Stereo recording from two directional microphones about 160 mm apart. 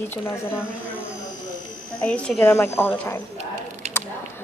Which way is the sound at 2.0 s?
5° left (ahead or behind).